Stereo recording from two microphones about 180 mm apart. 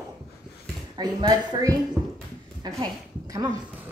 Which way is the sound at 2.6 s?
20° right (ahead or behind).